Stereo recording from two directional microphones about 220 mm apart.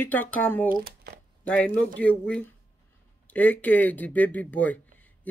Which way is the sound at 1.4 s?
5° left (ahead or behind).